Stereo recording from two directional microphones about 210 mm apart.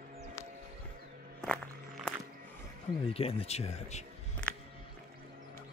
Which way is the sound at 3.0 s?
30° left (ahead or behind).